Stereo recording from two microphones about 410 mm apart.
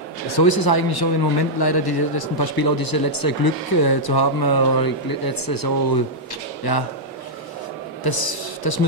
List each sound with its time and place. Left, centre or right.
0.4 s speech: left
8.0 s speech: left